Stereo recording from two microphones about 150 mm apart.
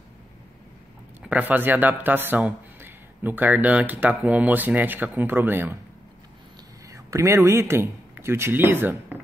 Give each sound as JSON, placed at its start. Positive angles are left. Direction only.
{"t": 1.2, "sound": "speech", "side_deg": -10}
{"t": 6.9, "sound": "speech", "side_deg": -20}